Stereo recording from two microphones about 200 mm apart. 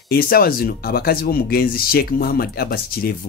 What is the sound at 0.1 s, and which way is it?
Speech, 50° left (ahead or behind).